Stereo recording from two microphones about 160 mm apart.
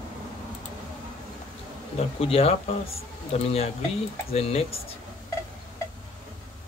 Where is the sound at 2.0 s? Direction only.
35° left (ahead or behind).